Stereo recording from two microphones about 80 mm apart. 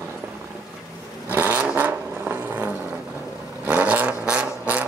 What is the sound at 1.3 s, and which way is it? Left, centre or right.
Vehicle, right.